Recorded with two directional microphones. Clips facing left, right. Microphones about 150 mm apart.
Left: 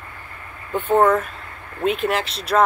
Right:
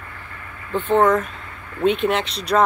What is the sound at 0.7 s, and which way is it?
Speech, 10° left (ahead or behind).